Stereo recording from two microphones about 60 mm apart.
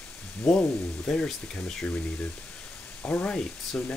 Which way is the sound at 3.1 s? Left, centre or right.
Centre.